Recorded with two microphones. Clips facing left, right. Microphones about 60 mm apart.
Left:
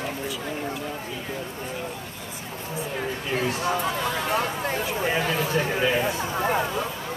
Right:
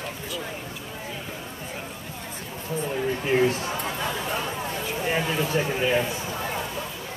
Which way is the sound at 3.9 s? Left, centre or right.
Left.